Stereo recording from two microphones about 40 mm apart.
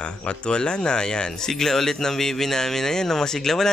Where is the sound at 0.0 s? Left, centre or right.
Left.